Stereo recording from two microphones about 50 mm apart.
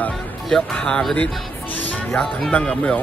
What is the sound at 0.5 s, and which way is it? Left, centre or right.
Speech, centre.